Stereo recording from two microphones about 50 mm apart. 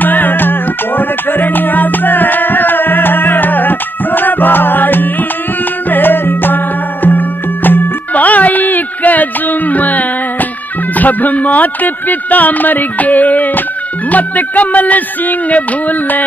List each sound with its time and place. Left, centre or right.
0.0 s music: left
11.0 s speech: left